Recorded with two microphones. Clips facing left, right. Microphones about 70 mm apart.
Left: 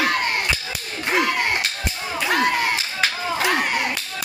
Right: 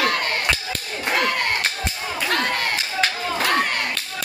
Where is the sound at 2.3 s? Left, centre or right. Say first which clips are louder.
Left 4 dB; centre.